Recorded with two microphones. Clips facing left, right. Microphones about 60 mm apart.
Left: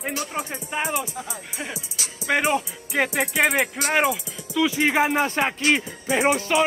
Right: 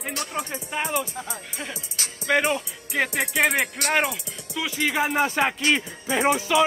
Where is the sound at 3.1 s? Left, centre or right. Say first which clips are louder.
Left 1 dB; centre.